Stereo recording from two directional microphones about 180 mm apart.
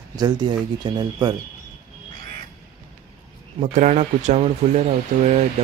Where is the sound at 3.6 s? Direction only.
45° right (ahead or behind).